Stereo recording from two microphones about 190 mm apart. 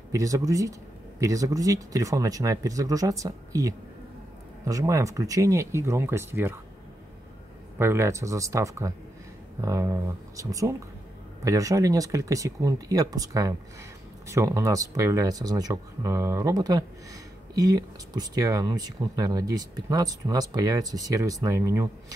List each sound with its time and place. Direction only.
0.1 s speech: 15° right (ahead or behind)
7.8 s speech: 15° right (ahead or behind)